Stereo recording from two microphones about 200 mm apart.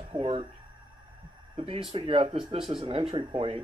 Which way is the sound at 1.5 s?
30° right (ahead or behind).